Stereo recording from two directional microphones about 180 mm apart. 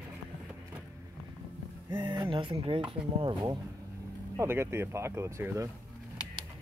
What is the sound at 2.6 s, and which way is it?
Speech, 30° right (ahead or behind).